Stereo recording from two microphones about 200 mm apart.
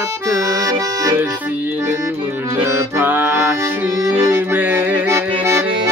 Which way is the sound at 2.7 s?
10° right (ahead or behind).